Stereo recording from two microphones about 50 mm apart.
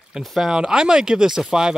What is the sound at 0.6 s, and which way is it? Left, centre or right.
Speech, centre.